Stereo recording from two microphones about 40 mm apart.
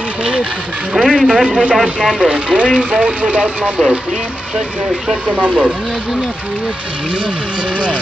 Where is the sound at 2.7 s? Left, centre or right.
Centre.